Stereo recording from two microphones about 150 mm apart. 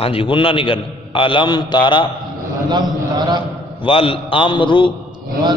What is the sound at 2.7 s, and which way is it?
Speech, 30° right (ahead or behind).